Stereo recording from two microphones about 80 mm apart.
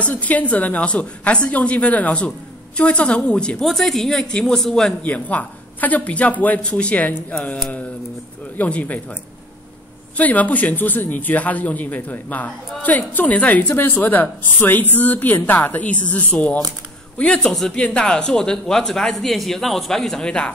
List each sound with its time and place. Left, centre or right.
0.0 s speech: centre
5.0 s speech: centre
8.5 s speech: centre
10.1 s speech: centre